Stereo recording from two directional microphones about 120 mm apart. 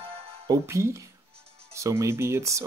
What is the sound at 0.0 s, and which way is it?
Music, 55° right (ahead or behind).